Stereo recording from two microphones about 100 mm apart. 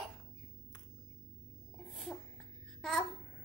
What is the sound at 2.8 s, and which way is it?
Babbling, centre (ahead or behind).